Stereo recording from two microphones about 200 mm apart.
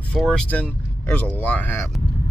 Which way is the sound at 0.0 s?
5° left (ahead or behind).